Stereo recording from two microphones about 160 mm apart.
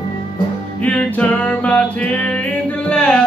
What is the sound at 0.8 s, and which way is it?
Music, 10° left (ahead or behind).